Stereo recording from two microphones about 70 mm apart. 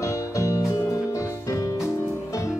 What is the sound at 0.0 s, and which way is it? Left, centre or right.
Music, left.